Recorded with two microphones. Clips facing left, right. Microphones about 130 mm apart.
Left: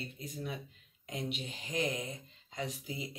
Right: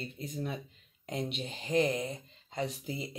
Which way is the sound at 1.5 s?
30° right (ahead or behind).